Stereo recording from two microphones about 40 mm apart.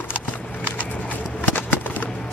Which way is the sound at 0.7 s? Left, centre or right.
Left.